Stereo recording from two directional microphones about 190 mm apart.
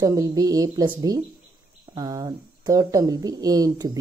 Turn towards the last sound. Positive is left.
turn(degrees=-20)  # may be behind; listen again after turning